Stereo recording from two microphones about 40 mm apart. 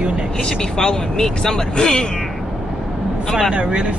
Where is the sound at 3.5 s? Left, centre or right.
Right.